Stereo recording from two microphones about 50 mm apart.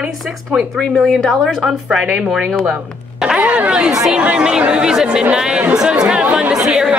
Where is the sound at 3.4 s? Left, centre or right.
Right.